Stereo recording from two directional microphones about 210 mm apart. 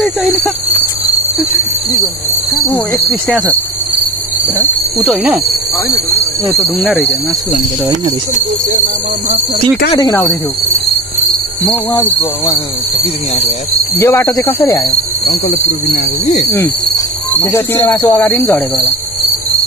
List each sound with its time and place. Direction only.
0.0 s a sound: centre (ahead or behind)
5.0 s speech: centre (ahead or behind)
6.4 s speech: centre (ahead or behind)
9.9 s speech: 10° left (ahead or behind)
13.9 s speech: 15° left (ahead or behind)
15.2 s speech: 45° left (ahead or behind)
16.9 s speech: 15° left (ahead or behind)